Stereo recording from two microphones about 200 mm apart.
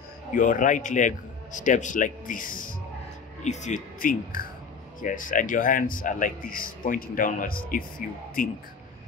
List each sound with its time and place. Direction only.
0.3 s a man's voice: 40° left (ahead or behind)